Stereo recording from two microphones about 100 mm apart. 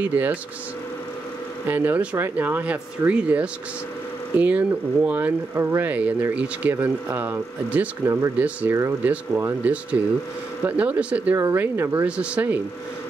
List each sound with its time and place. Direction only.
0.0 s speech: 20° right (ahead or behind)
1.7 s speech: 20° right (ahead or behind)
11.3 s speech: 30° right (ahead or behind)
12.2 s speech: 15° right (ahead or behind)